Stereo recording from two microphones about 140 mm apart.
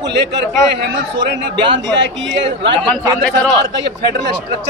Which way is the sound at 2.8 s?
5° left (ahead or behind).